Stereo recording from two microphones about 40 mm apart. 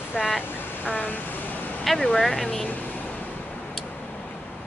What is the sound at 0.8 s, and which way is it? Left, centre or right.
Vehicle, left.